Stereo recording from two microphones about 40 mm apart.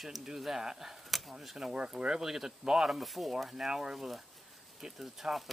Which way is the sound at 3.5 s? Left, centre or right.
Centre.